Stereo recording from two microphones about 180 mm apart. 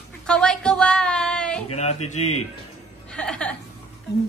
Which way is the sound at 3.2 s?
5° left (ahead or behind).